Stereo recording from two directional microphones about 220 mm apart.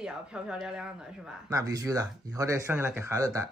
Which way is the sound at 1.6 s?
15° right (ahead or behind).